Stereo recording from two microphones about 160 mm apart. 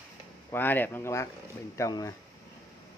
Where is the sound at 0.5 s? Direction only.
10° left (ahead or behind).